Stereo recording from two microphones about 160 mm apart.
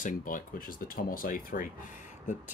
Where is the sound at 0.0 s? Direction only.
55° left (ahead or behind).